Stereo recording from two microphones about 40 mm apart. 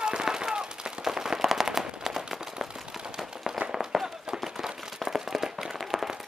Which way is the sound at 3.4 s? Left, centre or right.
Centre.